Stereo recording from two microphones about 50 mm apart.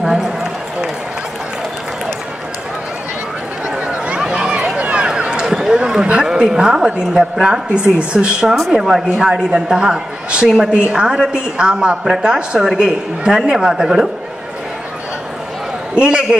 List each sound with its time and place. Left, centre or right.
3.8 s a sound: centre
7.4 s speech: centre
8.5 s speech: centre
15.9 s a man's voice: centre